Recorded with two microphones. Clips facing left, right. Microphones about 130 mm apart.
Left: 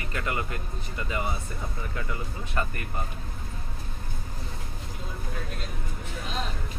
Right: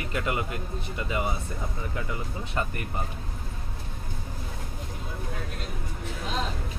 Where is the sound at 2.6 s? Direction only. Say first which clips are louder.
Even; 20° right (ahead or behind).